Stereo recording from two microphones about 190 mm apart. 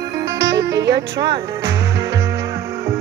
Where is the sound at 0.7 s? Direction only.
65° right (ahead or behind).